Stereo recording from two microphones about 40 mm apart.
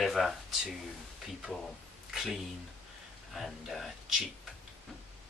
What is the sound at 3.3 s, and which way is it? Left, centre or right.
Speech, centre.